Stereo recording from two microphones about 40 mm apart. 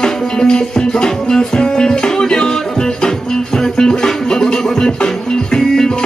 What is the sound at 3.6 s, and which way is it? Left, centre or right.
Music, centre.